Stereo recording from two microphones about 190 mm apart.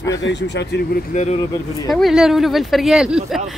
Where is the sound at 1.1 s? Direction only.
35° left (ahead or behind).